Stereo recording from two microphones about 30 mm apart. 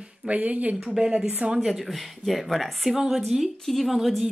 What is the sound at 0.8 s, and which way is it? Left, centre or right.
Speech, right.